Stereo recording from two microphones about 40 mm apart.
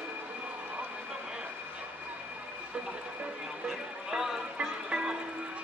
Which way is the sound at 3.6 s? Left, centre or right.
Centre.